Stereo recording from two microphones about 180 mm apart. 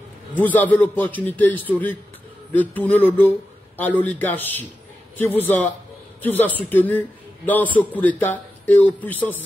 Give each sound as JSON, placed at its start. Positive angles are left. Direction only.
{"t": 0.4, "sound": "speech", "side_deg": 10}